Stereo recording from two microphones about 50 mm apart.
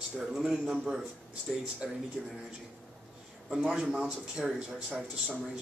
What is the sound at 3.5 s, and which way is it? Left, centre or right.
Speech, centre.